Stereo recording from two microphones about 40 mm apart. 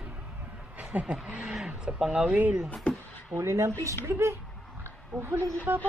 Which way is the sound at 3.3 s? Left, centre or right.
Right.